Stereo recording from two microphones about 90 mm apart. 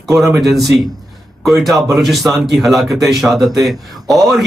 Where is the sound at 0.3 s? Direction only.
Centre (ahead or behind).